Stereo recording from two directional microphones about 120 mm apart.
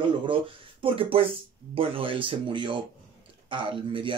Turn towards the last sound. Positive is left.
turn(degrees=-45)  # may be behind; listen again after turning